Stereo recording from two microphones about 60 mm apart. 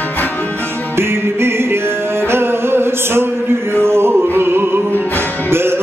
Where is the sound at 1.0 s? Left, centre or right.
Right.